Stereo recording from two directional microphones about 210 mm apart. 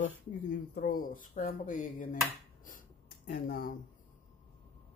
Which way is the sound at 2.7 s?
40° left (ahead or behind).